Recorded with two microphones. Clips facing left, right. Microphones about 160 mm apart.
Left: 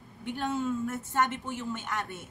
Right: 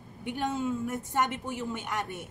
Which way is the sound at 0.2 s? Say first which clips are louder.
Even; 15° right (ahead or behind).